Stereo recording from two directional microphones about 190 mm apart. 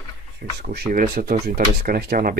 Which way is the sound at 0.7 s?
45° right (ahead or behind).